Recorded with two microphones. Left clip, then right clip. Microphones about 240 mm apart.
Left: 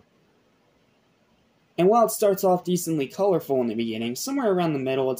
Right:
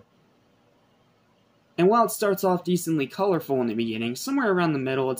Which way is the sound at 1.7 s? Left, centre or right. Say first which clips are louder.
Left 1 dB; centre.